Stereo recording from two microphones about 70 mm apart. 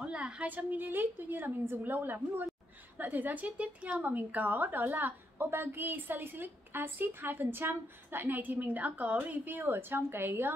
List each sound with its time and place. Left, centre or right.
0.0 s a woman's voice: centre; by 10.5 s right